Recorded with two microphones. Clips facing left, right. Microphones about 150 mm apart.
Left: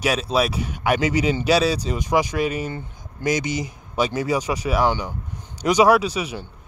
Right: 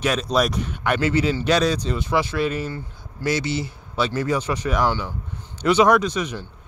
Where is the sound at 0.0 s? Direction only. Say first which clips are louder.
Even; 5° left (ahead or behind).